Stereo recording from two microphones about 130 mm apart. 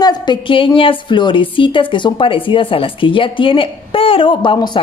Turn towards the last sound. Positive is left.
turn(degrees=35)  # may be behind; listen again after turning